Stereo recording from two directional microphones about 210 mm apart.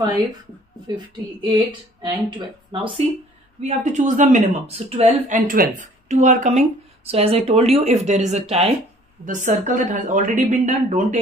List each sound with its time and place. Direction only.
1.4 s speech: 20° right (ahead or behind)
3.6 s speech: 35° right (ahead or behind)